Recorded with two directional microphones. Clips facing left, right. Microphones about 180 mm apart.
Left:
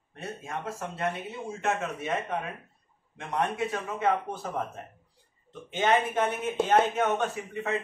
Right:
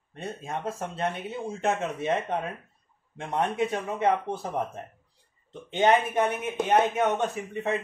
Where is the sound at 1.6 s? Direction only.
20° right (ahead or behind).